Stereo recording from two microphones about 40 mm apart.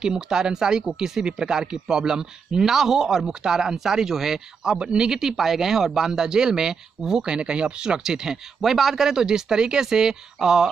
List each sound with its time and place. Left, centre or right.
0.0 s speech: centre
2.7 s speech: centre
4.7 s speech: centre
8.5 s speech: centre